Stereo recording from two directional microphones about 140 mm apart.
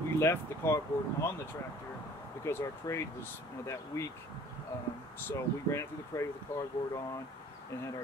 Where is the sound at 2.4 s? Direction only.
20° left (ahead or behind).